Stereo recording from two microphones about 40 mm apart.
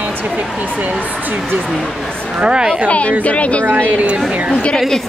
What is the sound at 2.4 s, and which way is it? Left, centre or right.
Speech, right.